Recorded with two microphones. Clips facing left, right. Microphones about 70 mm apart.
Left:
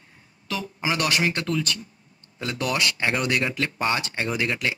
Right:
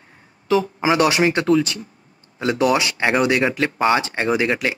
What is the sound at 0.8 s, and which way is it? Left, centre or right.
Speech, centre.